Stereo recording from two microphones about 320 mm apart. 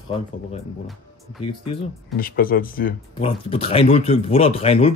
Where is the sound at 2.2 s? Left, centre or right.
Left.